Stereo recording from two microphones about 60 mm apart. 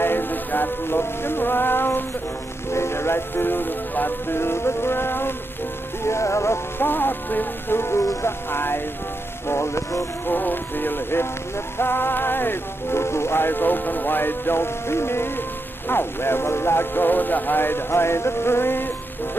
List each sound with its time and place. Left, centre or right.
0.0 s music: left
2.7 s speech: left
6.0 s music: left
6.8 s speech: left
9.5 s music: left
10.2 s speech: left